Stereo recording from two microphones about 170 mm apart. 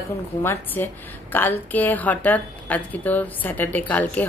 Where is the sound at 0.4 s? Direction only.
15° left (ahead or behind).